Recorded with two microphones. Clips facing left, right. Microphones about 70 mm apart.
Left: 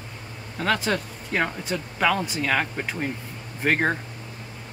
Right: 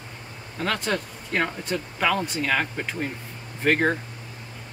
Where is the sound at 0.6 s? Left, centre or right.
Centre.